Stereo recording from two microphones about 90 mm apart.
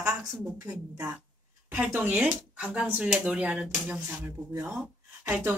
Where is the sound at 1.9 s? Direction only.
20° right (ahead or behind).